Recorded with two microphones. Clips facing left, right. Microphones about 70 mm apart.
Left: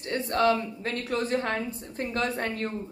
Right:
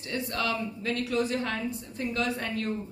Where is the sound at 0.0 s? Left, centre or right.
Left.